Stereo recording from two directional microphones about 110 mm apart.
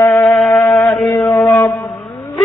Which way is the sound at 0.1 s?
5° left (ahead or behind).